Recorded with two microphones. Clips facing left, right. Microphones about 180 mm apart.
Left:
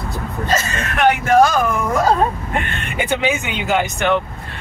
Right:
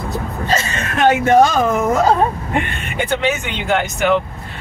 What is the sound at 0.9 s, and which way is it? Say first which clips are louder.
Speech: right 2 dB; 25° right (ahead or behind).